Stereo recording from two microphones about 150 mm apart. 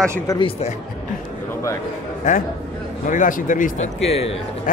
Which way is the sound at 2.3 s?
55° left (ahead or behind).